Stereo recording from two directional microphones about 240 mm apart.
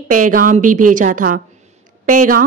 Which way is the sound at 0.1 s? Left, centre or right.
Right.